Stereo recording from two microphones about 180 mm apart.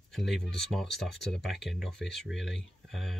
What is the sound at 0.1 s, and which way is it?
Speech, centre (ahead or behind).